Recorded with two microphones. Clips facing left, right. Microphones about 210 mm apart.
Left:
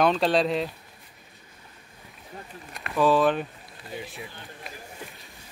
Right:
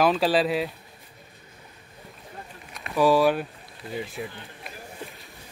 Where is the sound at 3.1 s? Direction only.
10° right (ahead or behind).